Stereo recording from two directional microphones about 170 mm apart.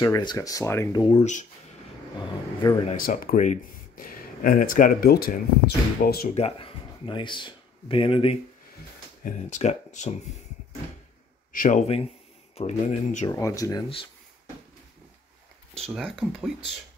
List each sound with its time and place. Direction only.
0.0 s speech: 25° left (ahead or behind)
1.1 s speech: 45° left (ahead or behind)
3.0 s speech: 55° left (ahead or behind)
6.3 s speech: 35° left (ahead or behind)
9.2 s speech: 45° left (ahead or behind)
11.5 s a man's voice: 50° left (ahead or behind)
13.3 s speech: 20° left (ahead or behind)
15.7 s speech: 5° left (ahead or behind)